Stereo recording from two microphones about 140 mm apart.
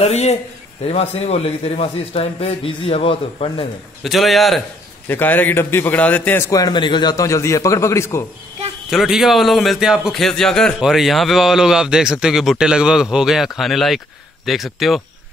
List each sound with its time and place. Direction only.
0.0 s a man's voice: 50° left (ahead or behind)
4.0 s speech: centre (ahead or behind)
5.0 s a man's voice: 15° left (ahead or behind)
6.5 s a man's voice: 30° left (ahead or behind)
8.9 s speech: centre (ahead or behind)